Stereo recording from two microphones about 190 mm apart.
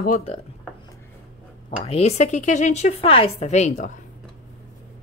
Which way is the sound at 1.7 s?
35° left (ahead or behind).